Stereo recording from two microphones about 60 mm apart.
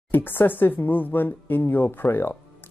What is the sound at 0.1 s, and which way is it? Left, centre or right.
Speech, left.